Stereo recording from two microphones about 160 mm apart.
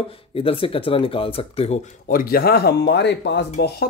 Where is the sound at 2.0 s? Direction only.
65° left (ahead or behind); by 3.4 s 90° left.